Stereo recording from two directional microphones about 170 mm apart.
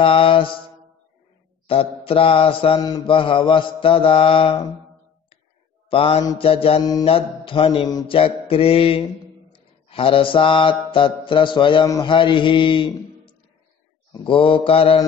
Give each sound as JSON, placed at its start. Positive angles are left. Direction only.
{"t": 0.0, "sound": "mantra", "side_deg": 30}
{"t": 1.7, "sound": "mantra", "side_deg": 35}
{"t": 5.9, "sound": "mantra", "side_deg": 35}